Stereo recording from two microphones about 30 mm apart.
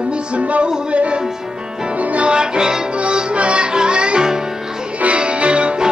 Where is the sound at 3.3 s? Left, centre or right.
Right.